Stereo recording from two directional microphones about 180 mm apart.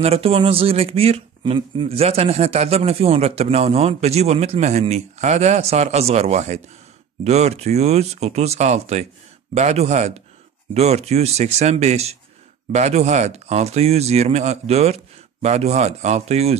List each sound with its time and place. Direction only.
0.0 s speech: 35° right (ahead or behind)